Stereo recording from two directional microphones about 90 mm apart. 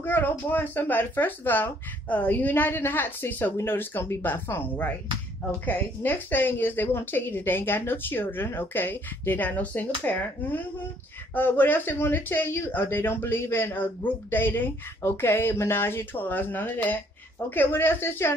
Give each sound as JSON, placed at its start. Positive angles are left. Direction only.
{"t": 0.0, "sound": "speech", "side_deg": 25}